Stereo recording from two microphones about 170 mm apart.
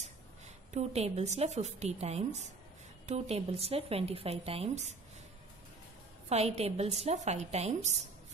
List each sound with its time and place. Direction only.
0.7 s speech: 40° right (ahead or behind)
6.2 s speech: 40° right (ahead or behind)